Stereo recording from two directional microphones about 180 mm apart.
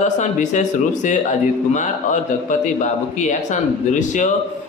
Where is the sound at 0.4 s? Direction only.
45° left (ahead or behind).